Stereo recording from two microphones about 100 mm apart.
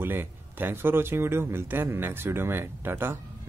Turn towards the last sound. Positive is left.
turn(degrees=-25)  # may be behind; listen again after turning